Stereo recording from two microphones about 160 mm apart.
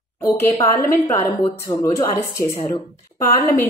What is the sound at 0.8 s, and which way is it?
A woman's voice, 15° left (ahead or behind).